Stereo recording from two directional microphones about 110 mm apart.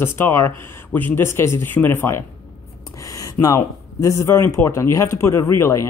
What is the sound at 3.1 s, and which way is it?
Speech, 30° left (ahead or behind).